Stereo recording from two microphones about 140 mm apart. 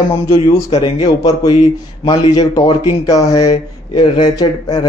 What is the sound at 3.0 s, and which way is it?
Speech, 25° left (ahead or behind).